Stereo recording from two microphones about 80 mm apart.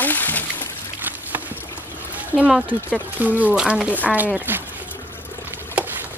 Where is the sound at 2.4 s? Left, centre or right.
Centre.